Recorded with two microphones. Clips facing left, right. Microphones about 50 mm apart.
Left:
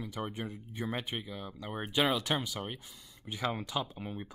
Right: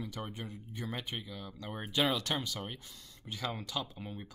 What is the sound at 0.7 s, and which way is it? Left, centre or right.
Speech, centre.